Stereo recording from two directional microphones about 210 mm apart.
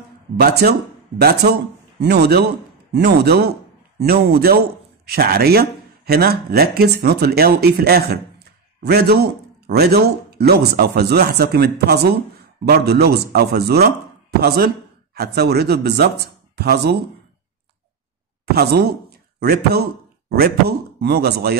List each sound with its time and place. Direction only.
0.4 s speech: 50° right (ahead or behind)
18.4 s a woman's voice: 50° right (ahead or behind)